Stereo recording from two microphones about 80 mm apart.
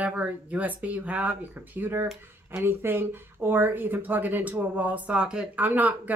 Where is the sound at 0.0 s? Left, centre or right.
Centre.